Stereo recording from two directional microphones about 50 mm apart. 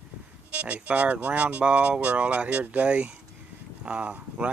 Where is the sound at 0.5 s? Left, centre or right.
Right.